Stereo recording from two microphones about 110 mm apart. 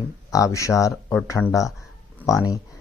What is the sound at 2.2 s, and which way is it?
Speech, 30° left (ahead or behind).